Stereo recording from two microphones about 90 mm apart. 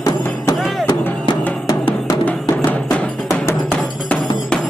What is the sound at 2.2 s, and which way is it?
Music, 15° left (ahead or behind).